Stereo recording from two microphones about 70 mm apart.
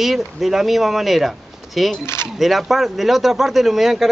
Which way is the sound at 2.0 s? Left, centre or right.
Left.